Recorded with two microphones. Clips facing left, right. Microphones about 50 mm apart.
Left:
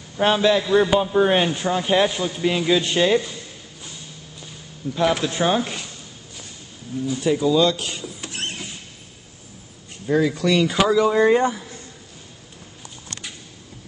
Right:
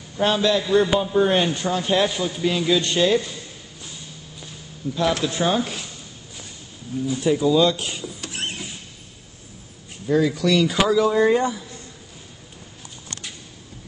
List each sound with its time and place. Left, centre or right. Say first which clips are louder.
0.2 s a man's voice: left 2 dB; left
4.9 s a man's voice: left 2 dB; centre
7.2 s speech: even; centre
10.0 s speech: even; centre